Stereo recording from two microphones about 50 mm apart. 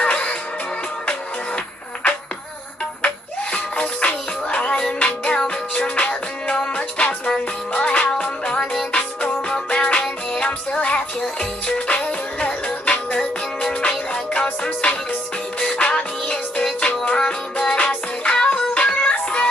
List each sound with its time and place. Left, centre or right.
0.0 s music: left
3.5 s music: left